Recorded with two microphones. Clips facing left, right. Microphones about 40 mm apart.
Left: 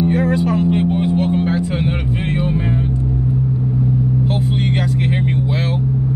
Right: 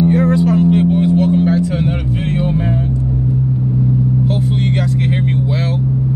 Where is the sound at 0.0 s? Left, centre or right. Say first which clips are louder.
Right 3 dB; centre.